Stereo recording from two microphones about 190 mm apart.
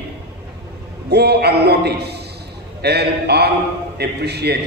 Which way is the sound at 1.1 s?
60° right (ahead or behind).